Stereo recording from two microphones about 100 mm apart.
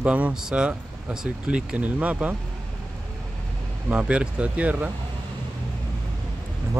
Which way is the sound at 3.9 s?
10° right (ahead or behind).